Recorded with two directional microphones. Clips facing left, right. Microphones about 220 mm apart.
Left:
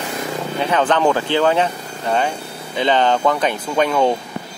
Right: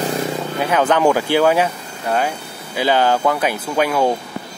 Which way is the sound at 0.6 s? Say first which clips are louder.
Right 1 dB; 10° right (ahead or behind).